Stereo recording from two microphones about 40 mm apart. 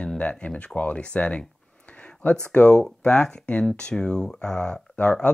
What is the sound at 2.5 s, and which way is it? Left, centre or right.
Speech, left.